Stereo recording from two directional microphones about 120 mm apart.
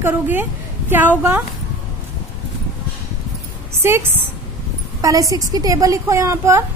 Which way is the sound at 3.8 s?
20° right (ahead or behind).